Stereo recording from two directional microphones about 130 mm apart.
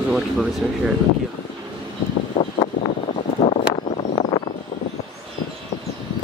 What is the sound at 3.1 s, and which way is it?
Vehicle, 55° left (ahead or behind).